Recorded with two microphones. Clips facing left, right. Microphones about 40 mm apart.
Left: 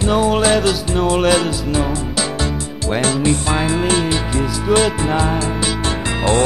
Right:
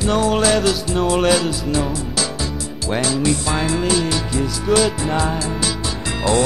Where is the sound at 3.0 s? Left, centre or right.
Left.